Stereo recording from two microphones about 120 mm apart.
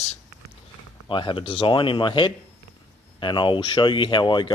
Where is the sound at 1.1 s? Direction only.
45° left (ahead or behind).